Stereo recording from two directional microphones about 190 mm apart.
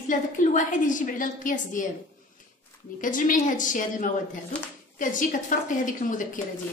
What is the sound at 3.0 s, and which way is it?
A woman's voice, 45° left (ahead or behind).